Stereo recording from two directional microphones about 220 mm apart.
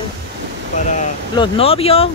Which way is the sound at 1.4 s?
25° left (ahead or behind).